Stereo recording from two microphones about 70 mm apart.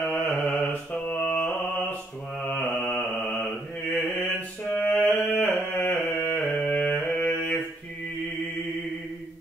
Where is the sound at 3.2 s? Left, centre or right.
Centre.